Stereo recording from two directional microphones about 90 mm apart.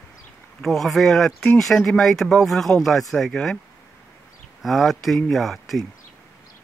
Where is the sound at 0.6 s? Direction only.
Centre (ahead or behind).